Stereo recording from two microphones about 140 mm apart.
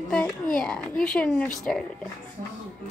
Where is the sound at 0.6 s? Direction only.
5° left (ahead or behind).